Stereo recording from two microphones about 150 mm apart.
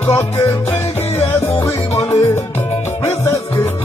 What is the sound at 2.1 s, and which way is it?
Music, 20° left (ahead or behind).